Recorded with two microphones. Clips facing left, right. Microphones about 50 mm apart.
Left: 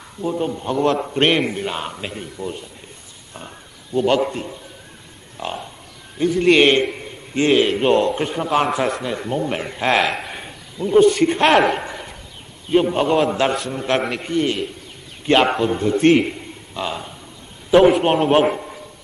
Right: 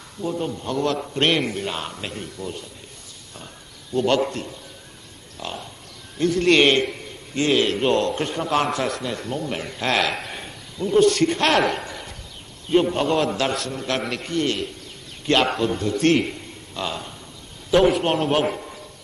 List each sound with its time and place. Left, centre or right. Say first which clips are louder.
0.2 s a man's voice: left 4 dB; centre
3.9 s a man's voice: left 3 dB; centre
5.4 s a sound: left 5 dB; centre
6.1 s a man's voice: left 3 dB; centre
7.5 s a man's voice: left 4 dB; centre
9.0 s a man's voice: left 4 dB; centre